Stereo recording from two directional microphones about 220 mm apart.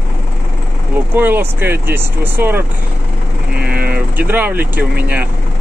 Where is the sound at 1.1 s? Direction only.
10° right (ahead or behind).